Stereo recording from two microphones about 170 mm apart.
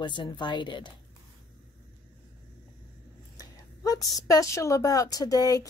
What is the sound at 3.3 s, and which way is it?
A woman's voice, 20° left (ahead or behind).